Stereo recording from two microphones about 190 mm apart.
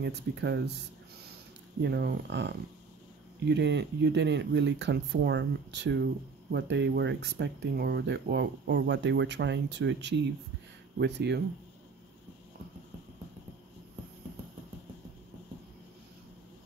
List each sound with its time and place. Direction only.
0.0 s speech: 65° right (ahead or behind)
1.8 s speech: 60° right (ahead or behind)